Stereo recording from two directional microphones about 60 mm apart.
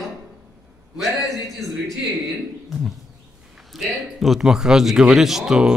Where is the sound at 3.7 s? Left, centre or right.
Centre.